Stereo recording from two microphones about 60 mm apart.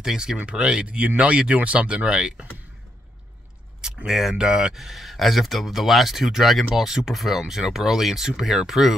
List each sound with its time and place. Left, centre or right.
0.0 s speech: centre
3.8 s speech: centre